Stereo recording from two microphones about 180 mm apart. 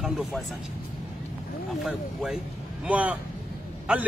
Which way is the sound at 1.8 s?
Centre (ahead or behind).